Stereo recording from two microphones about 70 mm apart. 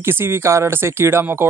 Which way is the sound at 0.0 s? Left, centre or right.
Right.